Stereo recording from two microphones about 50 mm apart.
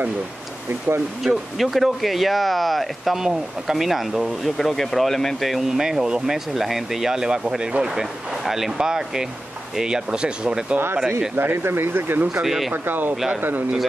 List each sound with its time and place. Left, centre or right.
1.2 s speech: centre
5.8 s speech: centre
11.3 s speech: right
12.4 s speech: centre
12.7 s speech: right